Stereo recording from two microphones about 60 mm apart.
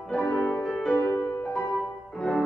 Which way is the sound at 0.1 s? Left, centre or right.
Centre.